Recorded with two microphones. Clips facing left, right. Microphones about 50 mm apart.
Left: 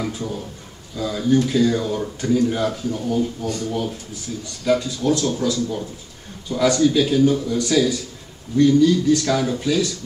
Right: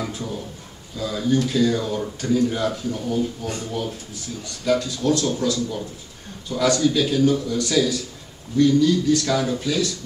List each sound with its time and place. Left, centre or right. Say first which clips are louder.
0.0 s a sound: left 2 dB; centre
0.9 s speech: left 3 dB; centre
3.4 s speech: left 4 dB; right
4.6 s speech: left 1 dB; centre